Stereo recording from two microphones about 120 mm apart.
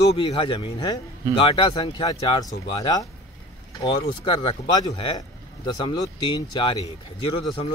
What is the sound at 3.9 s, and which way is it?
Speech, 45° left (ahead or behind).